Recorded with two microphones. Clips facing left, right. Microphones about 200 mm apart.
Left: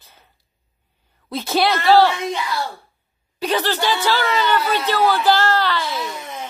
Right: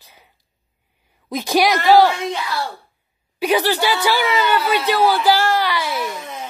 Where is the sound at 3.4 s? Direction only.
10° right (ahead or behind).